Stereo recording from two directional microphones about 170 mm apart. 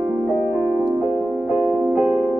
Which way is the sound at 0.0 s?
5° right (ahead or behind).